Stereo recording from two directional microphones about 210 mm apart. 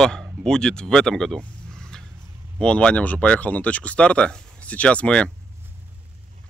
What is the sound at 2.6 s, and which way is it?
Speech, 5° left (ahead or behind).